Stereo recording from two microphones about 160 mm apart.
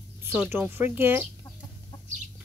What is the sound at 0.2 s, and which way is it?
Speech, 15° right (ahead or behind).